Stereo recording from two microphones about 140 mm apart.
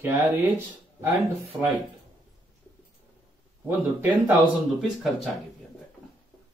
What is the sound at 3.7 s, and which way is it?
Speech, 15° right (ahead or behind).